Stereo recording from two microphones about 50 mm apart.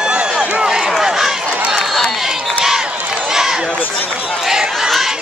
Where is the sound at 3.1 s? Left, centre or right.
Centre.